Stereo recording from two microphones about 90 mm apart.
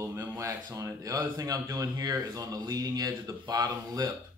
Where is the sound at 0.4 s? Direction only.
40° right (ahead or behind).